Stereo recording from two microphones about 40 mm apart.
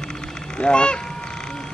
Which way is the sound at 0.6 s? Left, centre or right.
Left.